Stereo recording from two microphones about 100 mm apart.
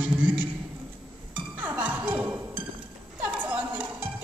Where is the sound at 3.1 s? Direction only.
15° right (ahead or behind).